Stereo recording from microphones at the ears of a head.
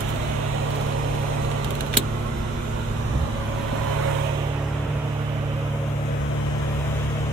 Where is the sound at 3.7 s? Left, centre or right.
Right.